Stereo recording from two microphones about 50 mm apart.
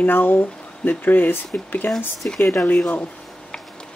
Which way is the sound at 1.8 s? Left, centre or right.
Left.